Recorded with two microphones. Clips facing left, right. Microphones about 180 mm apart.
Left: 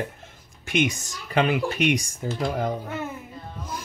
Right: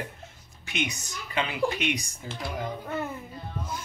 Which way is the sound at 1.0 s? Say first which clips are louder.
Left 7 dB; 90° left.